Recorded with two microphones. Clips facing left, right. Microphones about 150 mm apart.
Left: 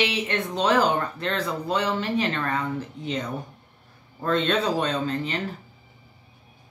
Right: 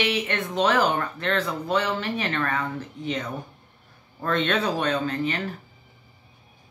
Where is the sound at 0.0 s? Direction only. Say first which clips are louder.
Even; 25° left (ahead or behind).